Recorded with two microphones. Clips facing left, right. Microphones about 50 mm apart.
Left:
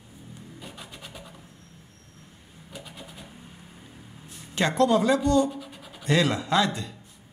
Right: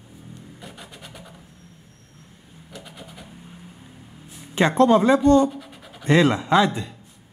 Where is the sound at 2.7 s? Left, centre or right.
Centre.